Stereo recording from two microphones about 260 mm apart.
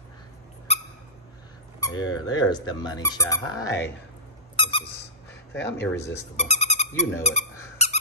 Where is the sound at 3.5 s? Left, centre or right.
Left.